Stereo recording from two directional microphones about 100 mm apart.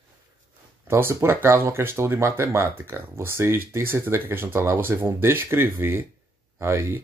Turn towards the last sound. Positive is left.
turn(degrees=-25)  # may be behind; listen again after turning